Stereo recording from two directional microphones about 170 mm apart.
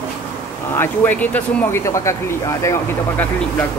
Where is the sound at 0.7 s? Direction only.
10° left (ahead or behind).